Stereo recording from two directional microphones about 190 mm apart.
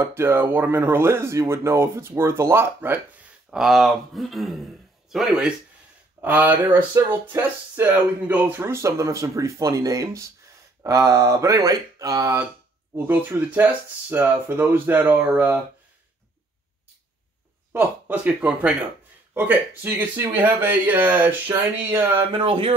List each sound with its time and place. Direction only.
0.0 s speech: 15° right (ahead or behind)
3.4 s speech: centre (ahead or behind)
17.7 s speech: 10° right (ahead or behind)
22.4 s speech: 30° right (ahead or behind)